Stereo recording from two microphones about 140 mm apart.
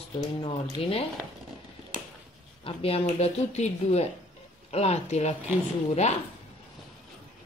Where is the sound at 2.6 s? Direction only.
40° left (ahead or behind).